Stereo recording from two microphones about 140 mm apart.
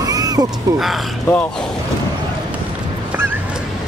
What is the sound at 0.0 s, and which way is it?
Crow, 25° right (ahead or behind).